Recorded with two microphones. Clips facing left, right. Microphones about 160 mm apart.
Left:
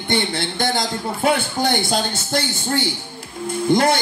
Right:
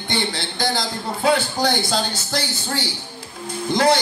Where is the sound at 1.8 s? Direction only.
25° left (ahead or behind).